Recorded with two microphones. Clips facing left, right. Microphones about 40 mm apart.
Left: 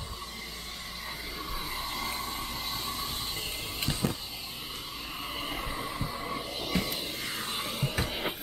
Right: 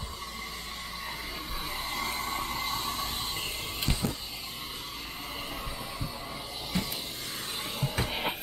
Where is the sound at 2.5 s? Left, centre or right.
Centre.